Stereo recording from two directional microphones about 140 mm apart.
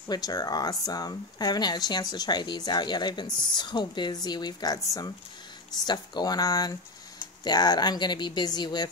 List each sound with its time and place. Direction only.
0.1 s speech: 25° left (ahead or behind)